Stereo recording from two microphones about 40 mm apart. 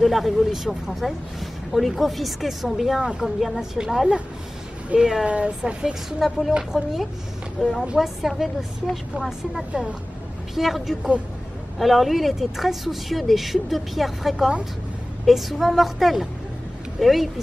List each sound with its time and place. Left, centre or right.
0.0 s speech: centre
3.0 s a woman's voice: centre
3.3 s speech: centre
4.9 s a woman's voice: centre
5.2 s speech: right
6.0 s a woman's voice: centre
7.6 s a woman's voice: centre